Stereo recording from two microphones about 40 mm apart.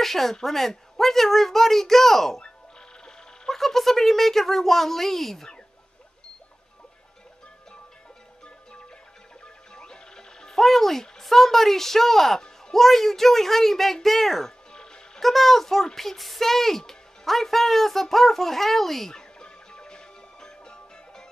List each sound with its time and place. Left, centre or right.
0.0 s speech: centre
3.4 s speech: centre
9.8 s music: centre
10.6 s speech: centre
19.1 s music: centre